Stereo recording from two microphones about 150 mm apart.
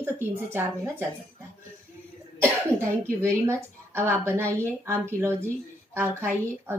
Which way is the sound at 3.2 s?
20° right (ahead or behind).